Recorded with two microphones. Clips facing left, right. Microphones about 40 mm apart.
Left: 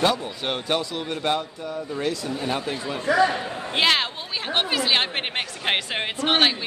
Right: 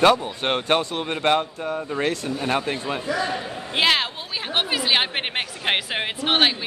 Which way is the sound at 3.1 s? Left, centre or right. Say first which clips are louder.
Left 7 dB; left.